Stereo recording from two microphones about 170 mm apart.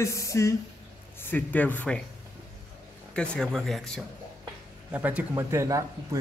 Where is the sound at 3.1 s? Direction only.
5° left (ahead or behind).